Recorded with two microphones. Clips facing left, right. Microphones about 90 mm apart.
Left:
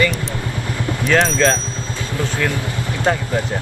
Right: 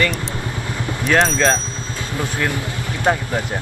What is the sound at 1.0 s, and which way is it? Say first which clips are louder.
Speech: even; 5° right (ahead or behind).